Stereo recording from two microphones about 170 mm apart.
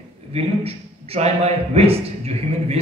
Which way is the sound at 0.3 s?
35° right (ahead or behind).